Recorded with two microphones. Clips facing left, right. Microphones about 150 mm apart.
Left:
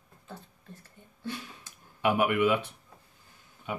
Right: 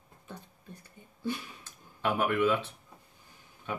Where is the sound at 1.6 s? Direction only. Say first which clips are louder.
Left 4 dB; 15° left (ahead or behind).